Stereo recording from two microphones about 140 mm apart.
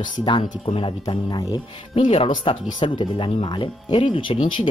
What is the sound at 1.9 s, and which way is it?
Speech, 40° left (ahead or behind).